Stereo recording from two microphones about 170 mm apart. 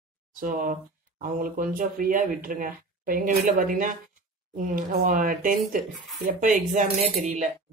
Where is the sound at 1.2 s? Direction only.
55° right (ahead or behind).